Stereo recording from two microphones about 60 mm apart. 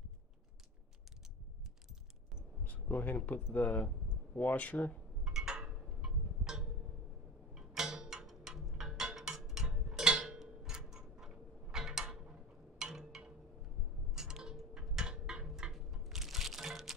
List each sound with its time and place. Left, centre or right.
2.6 s speech: left
5.2 s wind chime: centre
5.9 s a sound: centre